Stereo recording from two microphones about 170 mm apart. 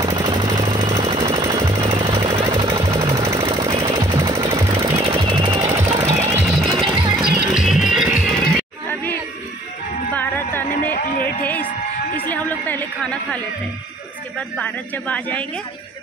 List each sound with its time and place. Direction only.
0.0 s jackhammer: 25° right (ahead or behind)
3.8 s jackhammer: 20° right (ahead or behind)
5.0 s jackhammer: 30° right (ahead or behind)
5.9 s jackhammer: 15° right (ahead or behind)
6.4 s music: centre (ahead or behind)
6.8 s music: 30° right (ahead or behind)
7.2 s music: 5° right (ahead or behind)
10.1 s music: 10° left (ahead or behind)
12.3 s chatter: 10° left (ahead or behind)
14.6 s speech: 10° left (ahead or behind)